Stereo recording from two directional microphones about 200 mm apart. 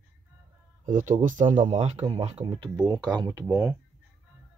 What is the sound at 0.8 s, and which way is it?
Speech, 40° right (ahead or behind).